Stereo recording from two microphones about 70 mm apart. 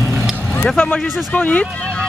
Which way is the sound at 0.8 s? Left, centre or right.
Left.